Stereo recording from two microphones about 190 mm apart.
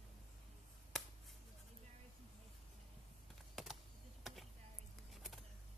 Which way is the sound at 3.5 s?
Centre (ahead or behind).